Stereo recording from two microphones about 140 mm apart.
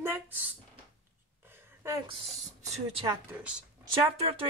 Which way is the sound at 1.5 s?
15° right (ahead or behind).